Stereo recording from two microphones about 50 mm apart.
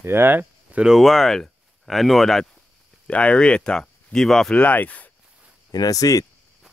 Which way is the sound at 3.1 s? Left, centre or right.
Left.